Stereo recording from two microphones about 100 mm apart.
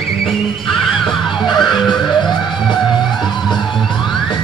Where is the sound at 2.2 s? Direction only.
50° left (ahead or behind).